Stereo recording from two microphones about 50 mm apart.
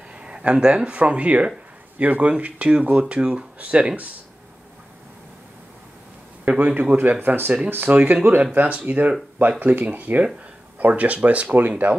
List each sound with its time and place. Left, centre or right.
0.2 s speech: right
6.6 s speech: right